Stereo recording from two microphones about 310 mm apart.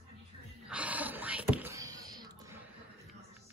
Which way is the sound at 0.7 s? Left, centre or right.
Centre.